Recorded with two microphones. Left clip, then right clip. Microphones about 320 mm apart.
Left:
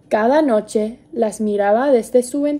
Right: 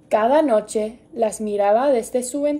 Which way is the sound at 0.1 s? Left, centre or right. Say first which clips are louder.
Left 1 dB; left.